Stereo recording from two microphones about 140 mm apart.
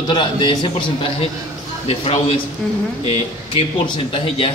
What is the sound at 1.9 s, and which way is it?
A man's voice, 40° left (ahead or behind).